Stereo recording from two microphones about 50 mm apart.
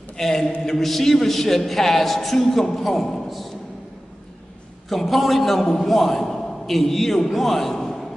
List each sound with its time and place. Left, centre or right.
0.2 s a man's voice: centre
4.8 s a man's voice: centre